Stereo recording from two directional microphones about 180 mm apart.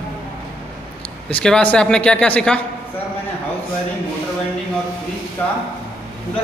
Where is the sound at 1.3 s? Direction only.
5° left (ahead or behind).